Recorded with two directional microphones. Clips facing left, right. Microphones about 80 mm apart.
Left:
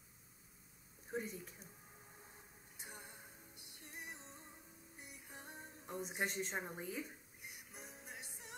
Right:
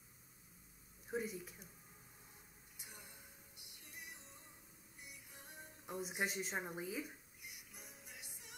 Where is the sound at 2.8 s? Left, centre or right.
Left.